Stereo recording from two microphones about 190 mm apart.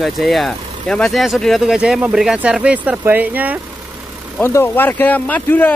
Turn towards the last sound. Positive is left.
turn(degrees=10)  # may be behind; listen again after turning